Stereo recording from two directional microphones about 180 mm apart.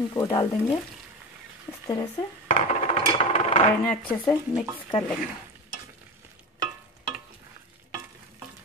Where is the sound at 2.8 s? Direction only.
30° left (ahead or behind).